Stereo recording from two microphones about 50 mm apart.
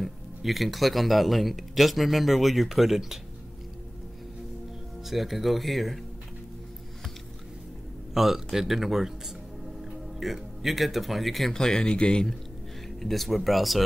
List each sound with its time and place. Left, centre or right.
0.0 s speech: centre
5.0 s speech: centre
8.1 s speech: centre
11.5 s speech: centre
13.0 s speech: centre